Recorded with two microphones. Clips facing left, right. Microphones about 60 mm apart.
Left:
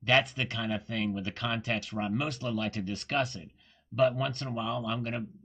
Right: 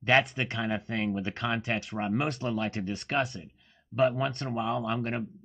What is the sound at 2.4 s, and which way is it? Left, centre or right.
Speech, right.